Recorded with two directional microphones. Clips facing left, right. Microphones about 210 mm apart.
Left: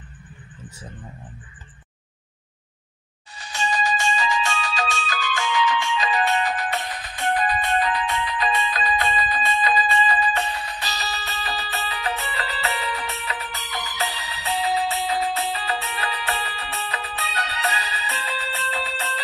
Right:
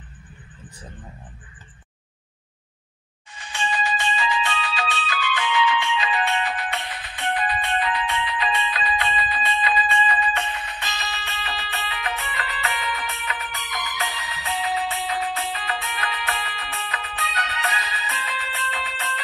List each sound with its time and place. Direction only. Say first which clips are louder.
3.3 s music: left 2 dB; 40° left (ahead or behind)